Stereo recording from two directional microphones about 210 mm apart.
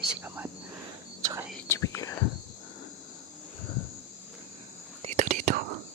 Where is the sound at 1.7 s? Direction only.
15° left (ahead or behind).